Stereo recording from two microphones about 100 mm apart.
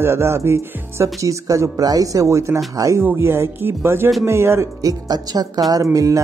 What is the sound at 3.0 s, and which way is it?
Speech, 20° right (ahead or behind).